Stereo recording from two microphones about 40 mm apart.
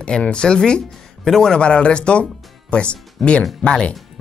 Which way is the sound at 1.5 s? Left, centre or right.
Left.